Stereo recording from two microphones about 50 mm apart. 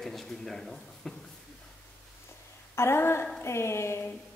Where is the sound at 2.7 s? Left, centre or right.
Left.